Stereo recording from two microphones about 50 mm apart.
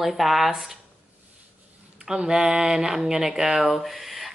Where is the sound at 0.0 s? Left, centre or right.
Centre.